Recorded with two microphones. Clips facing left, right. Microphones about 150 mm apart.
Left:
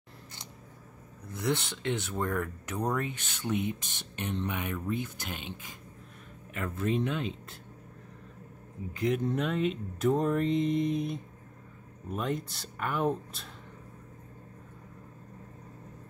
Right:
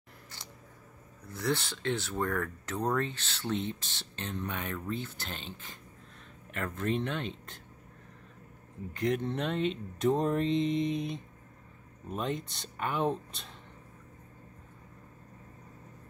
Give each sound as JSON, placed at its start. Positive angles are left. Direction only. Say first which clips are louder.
{"t": 1.3, "sound": "speech", "louder": "left 1 dB", "side_deg": 20}
{"t": 8.9, "sound": "speech", "louder": "left 2 dB", "side_deg": 5}